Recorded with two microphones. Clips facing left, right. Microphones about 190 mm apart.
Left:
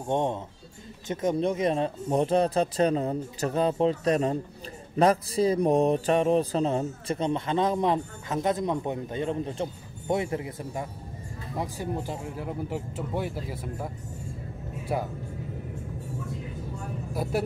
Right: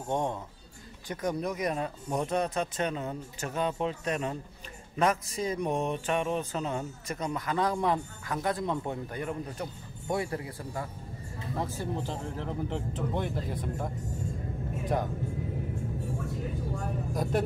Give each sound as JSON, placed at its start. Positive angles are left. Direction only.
{"t": 0.1, "sound": "speech", "side_deg": 20}
{"t": 17.1, "sound": "speech", "side_deg": 5}